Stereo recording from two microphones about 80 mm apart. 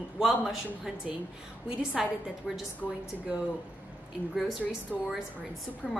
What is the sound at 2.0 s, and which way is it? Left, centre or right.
Speech, centre.